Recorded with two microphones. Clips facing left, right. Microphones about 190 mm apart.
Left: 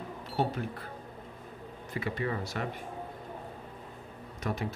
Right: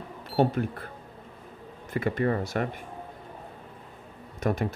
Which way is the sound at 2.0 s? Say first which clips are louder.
Right 7 dB; 50° right (ahead or behind).